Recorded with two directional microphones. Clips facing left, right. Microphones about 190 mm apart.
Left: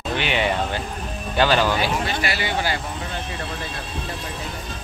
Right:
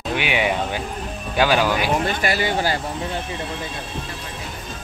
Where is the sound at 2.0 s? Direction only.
45° right (ahead or behind).